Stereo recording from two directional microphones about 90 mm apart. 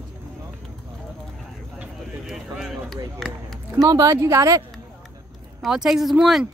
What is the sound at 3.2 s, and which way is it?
Speech, centre (ahead or behind).